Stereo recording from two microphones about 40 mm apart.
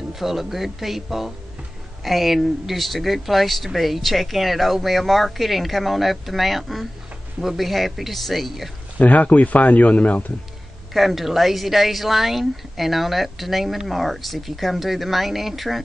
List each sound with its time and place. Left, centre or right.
0.1 s speech: centre
9.0 s speech: left
10.9 s speech: centre